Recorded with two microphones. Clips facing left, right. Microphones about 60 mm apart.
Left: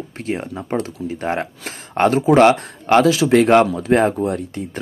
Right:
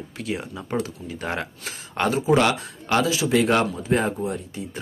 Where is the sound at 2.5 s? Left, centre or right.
Left.